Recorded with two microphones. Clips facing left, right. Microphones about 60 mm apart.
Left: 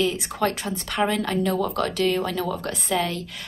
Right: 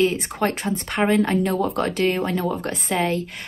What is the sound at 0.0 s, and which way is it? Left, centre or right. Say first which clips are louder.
A woman's voice: right 3 dB; right.